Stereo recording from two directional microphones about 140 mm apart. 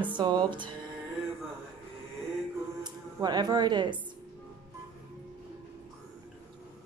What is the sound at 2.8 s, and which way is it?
Speech, 30° right (ahead or behind).